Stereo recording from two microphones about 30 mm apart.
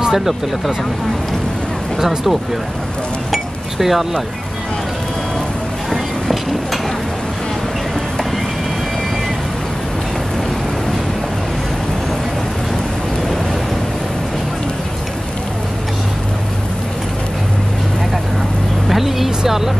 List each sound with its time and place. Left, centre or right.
0.1 s speech: centre
2.0 s speech: centre
3.3 s chink: centre
5.9 s a sound: centre
18.9 s vehicle: centre